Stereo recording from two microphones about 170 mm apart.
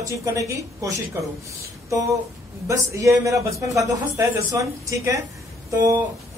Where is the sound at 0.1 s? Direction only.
20° right (ahead or behind).